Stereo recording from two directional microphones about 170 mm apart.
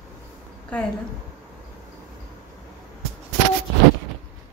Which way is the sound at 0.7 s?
5° left (ahead or behind).